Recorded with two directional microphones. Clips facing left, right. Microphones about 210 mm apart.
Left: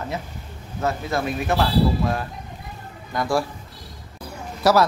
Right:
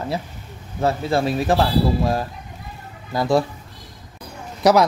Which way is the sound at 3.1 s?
20° right (ahead or behind).